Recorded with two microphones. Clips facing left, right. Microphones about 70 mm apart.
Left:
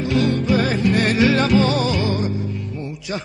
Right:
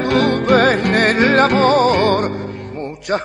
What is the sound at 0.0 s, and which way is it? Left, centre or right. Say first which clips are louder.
Music: right 4 dB; right.